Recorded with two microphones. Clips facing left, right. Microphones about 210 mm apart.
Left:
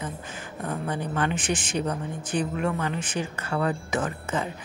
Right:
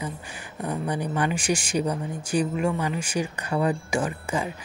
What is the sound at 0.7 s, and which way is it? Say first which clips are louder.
Speech: right 2 dB; 15° right (ahead or behind).